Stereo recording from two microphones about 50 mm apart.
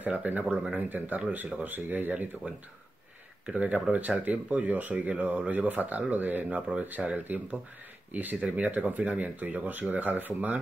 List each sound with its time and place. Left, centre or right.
0.0 s speech: right
2.4 s speech: right